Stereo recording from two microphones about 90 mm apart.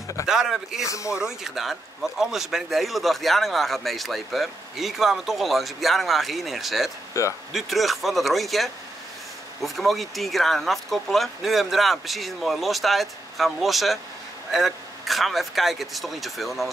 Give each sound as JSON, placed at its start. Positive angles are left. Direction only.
{"t": 0.3, "sound": "speech", "side_deg": -5}
{"t": 0.8, "sound": "speech", "side_deg": 35}
{"t": 1.1, "sound": "speech", "side_deg": -5}
{"t": 7.2, "sound": "speech", "side_deg": 35}
{"t": 7.5, "sound": "speech", "side_deg": 0}